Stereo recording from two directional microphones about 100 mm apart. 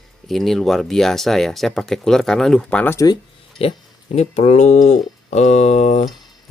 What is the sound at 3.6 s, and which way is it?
Speech, 80° left.